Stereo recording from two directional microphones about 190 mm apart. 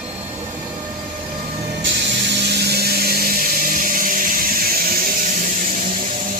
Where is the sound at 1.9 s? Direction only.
60° right (ahead or behind); by 6.1 s 40° right (ahead or behind).